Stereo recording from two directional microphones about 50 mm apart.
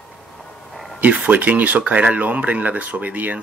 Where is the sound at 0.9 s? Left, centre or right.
Right.